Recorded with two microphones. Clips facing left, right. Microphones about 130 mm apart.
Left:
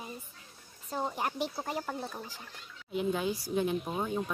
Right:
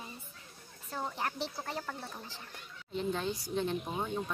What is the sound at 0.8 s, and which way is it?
Speech, 15° left (ahead or behind).